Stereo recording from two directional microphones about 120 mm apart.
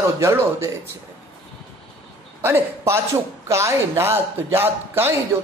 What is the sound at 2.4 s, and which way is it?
Speech, 20° right (ahead or behind).